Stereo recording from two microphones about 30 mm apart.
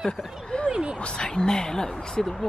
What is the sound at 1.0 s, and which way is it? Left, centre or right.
Speech, left.